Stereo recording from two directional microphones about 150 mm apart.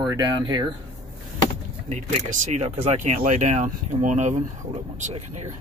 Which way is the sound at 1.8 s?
50° right (ahead or behind).